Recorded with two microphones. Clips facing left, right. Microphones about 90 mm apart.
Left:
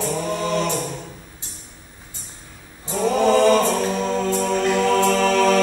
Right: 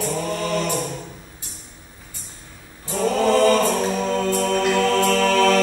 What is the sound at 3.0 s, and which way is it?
Choir, 10° left (ahead or behind).